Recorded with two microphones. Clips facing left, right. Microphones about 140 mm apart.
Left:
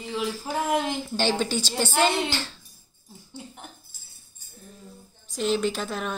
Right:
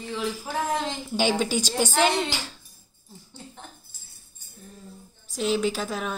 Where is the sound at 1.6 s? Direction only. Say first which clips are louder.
Right 2 dB; 15° right (ahead or behind).